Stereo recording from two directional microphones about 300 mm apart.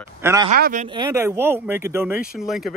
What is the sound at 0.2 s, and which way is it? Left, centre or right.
Speech, centre.